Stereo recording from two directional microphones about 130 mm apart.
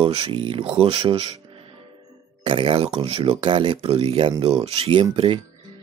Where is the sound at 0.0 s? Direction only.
50° right (ahead or behind).